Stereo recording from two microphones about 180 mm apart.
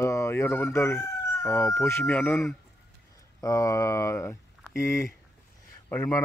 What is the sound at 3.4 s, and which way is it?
Speech, 20° left (ahead or behind).